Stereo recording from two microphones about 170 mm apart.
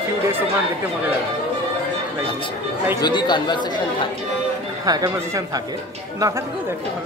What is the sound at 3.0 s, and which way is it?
Speech, 25° left (ahead or behind).